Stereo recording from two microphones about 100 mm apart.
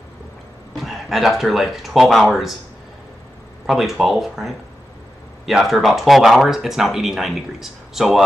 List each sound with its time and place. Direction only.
0.7 s speech: centre (ahead or behind)
3.6 s speech: 5° right (ahead or behind)